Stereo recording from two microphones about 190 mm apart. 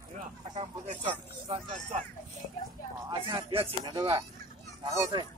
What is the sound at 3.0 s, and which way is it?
Speech, 25° right (ahead or behind).